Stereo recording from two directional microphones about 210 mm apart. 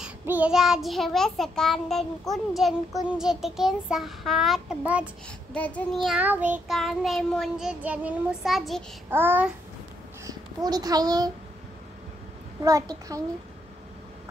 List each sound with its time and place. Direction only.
0.0 s child singing: 5° right (ahead or behind)
5.5 s child singing: 5° left (ahead or behind)
9.1 s a child's voice: 10° right (ahead or behind)
12.6 s a child's voice: 15° right (ahead or behind)